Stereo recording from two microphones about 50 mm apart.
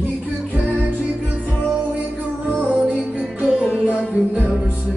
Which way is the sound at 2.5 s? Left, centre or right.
Right.